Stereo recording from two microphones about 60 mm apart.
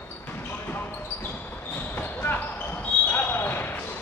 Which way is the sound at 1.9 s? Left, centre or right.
Left.